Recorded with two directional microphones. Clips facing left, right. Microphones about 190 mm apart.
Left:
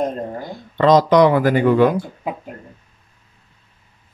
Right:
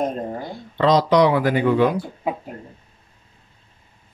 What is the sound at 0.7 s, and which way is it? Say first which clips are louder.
Speech: left 3 dB; 50° left (ahead or behind).